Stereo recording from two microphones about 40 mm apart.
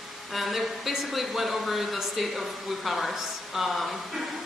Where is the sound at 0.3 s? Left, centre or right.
Centre.